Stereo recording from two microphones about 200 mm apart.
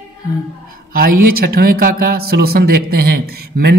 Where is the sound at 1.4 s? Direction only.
45° right (ahead or behind).